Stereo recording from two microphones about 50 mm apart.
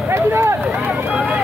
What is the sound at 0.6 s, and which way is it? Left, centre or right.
Vehicle, centre.